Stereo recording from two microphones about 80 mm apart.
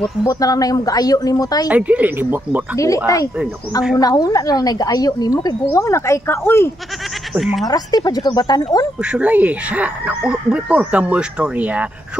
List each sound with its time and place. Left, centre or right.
0.2 s a woman's voice: left
1.7 s speech: centre
3.1 s a woman's voice: left
7.6 s speech: left
9.0 s speech: centre